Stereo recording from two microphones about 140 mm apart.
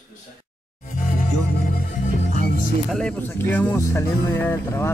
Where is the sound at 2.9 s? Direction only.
5° left (ahead or behind).